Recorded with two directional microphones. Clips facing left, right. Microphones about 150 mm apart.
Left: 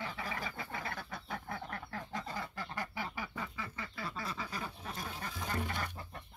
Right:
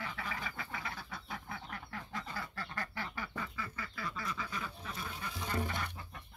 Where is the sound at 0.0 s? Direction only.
30° left (ahead or behind).